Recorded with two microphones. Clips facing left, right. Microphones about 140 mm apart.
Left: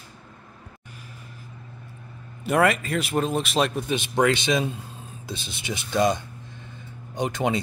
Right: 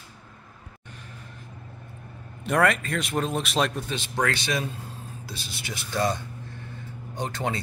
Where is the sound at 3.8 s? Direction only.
15° left (ahead or behind).